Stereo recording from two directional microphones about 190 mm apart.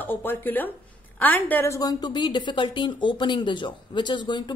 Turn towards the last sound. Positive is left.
turn(degrees=25)  # may be behind; listen again after turning